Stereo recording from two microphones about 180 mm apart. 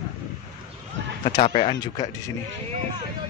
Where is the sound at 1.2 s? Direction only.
30° left (ahead or behind).